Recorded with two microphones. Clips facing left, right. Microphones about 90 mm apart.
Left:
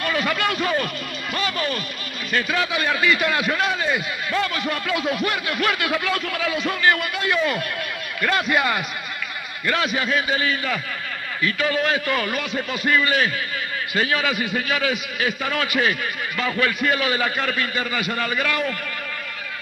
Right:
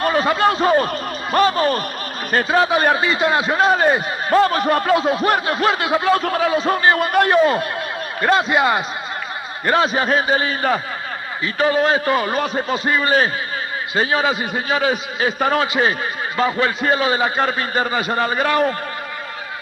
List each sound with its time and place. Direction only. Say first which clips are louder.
0.0 s a man's voice: right 7 dB; 35° right (ahead or behind)